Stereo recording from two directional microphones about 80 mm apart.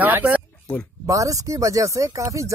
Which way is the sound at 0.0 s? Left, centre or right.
Right.